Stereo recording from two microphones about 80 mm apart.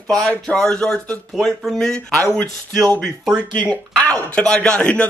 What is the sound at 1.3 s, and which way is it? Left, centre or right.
Speech, centre.